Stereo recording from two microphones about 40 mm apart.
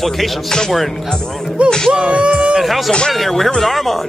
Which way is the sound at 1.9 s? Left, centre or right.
Right.